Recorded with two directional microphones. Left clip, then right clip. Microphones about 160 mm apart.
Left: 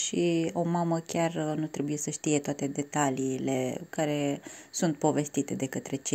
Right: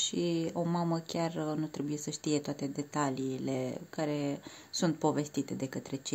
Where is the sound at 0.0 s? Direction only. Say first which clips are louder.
Left 4 dB; 10° left (ahead or behind).